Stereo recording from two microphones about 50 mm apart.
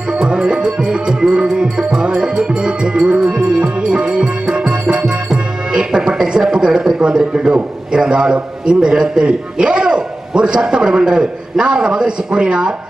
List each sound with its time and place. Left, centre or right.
0.1 s music: centre
6.4 s a man's voice: centre